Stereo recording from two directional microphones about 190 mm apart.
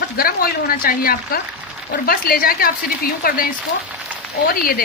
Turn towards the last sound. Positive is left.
turn(degrees=50)  # may be behind; listen again after turning